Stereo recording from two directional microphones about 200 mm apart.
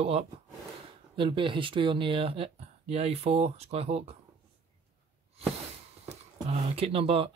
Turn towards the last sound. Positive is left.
turn(degrees=-30)  # may be behind; listen again after turning